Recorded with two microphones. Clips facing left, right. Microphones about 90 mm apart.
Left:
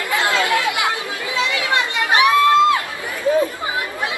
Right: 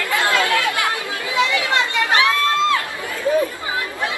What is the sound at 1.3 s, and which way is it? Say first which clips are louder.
Children playing: right 3 dB; 20° right (ahead or behind).